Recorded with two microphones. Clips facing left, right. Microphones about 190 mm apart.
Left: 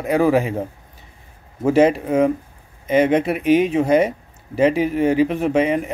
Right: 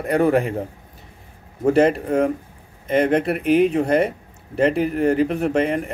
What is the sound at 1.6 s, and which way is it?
Speech, centre (ahead or behind).